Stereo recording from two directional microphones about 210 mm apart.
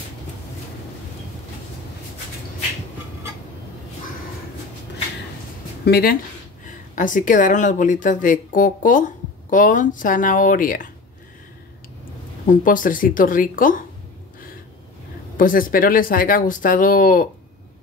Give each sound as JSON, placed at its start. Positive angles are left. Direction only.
{"t": 5.9, "sound": "speech", "side_deg": 50}
{"t": 7.0, "sound": "speech", "side_deg": 40}
{"t": 12.4, "sound": "speech", "side_deg": 40}
{"t": 15.3, "sound": "speech", "side_deg": 40}